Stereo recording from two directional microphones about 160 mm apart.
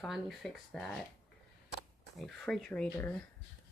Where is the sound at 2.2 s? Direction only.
Centre (ahead or behind).